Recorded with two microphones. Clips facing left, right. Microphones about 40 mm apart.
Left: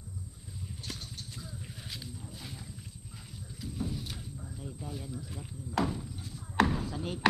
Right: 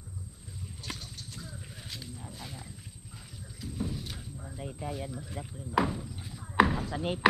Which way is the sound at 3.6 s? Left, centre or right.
Centre.